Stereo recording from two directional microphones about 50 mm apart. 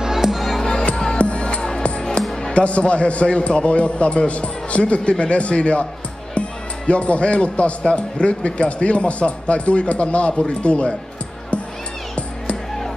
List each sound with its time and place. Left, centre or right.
0.0 s music: centre
0.7 s music: centre
2.4 s a man's voice: left
6.9 s a man's voice: left